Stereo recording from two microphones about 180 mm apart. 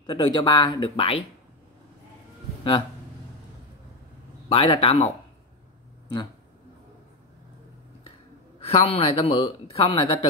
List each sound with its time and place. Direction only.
0.0 s speech: 25° left (ahead or behind)
4.5 s speech: 30° left (ahead or behind)
8.5 s speech: 35° left (ahead or behind)